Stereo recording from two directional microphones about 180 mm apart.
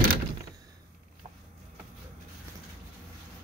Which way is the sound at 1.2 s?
35° right (ahead or behind).